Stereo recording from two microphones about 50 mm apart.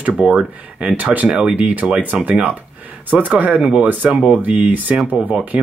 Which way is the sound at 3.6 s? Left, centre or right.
Right.